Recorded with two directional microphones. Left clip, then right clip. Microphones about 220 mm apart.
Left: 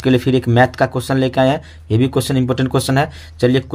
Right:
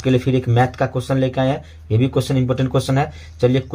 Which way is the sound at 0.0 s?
45° left (ahead or behind).